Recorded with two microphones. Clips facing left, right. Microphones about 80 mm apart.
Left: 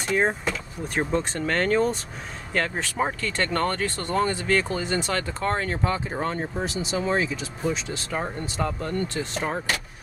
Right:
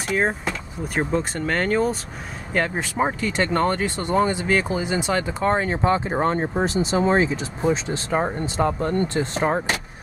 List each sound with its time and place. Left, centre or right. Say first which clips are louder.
0.0 s speech: right 1 dB; centre; by 9.8 s right